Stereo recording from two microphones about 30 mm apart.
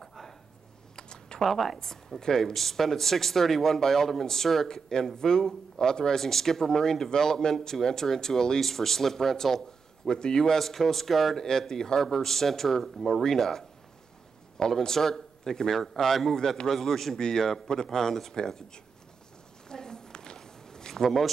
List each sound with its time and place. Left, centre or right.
0.0 s a sound: centre
0.9 s computer keyboard: left
1.4 s speech: centre
2.1 s speech: centre
5.1 s a man's voice: left
10.0 s a man's voice: left
10.6 s a man's voice: centre
12.0 s speech: centre
16.3 s a man's voice: left
19.7 s a sound: left
20.3 s walk: left
20.9 s speech: centre